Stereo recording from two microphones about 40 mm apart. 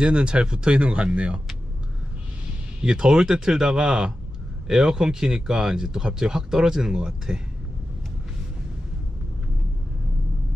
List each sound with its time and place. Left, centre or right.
0.0 s speech: right
2.8 s speech: centre